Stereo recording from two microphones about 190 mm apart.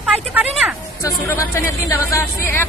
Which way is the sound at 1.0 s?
15° left (ahead or behind).